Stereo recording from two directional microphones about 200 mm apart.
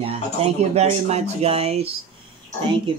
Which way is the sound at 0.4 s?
35° right (ahead or behind).